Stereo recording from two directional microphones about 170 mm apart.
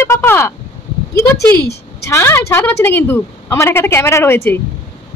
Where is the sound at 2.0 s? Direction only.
15° left (ahead or behind).